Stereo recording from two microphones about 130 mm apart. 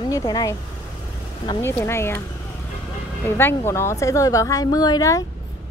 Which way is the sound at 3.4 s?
20° left (ahead or behind).